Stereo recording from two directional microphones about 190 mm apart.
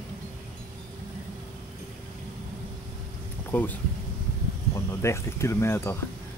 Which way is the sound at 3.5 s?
10° left (ahead or behind).